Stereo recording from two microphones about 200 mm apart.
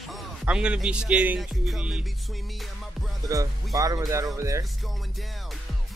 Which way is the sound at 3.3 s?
15° right (ahead or behind).